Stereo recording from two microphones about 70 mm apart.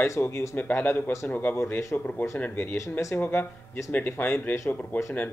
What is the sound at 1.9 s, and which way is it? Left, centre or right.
Speech, left.